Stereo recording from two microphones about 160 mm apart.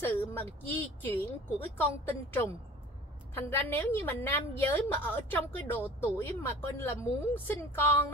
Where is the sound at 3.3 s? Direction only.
10° left (ahead or behind).